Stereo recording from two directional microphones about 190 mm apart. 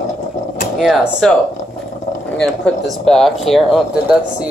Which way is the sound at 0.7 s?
Centre (ahead or behind).